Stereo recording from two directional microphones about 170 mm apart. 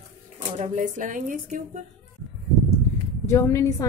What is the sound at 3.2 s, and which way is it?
Speech, 15° left (ahead or behind).